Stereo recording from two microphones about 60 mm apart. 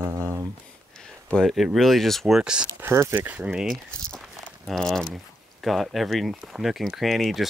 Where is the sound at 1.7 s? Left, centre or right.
Centre.